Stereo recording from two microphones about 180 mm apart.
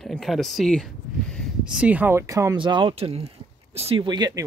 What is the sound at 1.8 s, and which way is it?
Speech, 10° right (ahead or behind).